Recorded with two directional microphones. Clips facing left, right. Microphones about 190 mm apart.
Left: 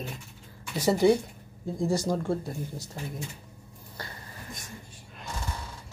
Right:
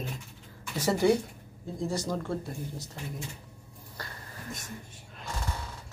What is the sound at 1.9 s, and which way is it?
Speech, 35° left (ahead or behind).